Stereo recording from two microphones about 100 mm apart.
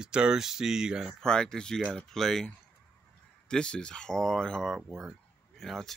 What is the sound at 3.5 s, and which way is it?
Speech, 10° left (ahead or behind).